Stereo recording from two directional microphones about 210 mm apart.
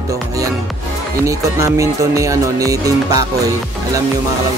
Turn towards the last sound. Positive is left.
turn(degrees=-15)  # may be behind; listen again after turning